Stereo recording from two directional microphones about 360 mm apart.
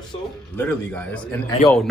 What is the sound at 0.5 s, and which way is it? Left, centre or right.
Speech, centre.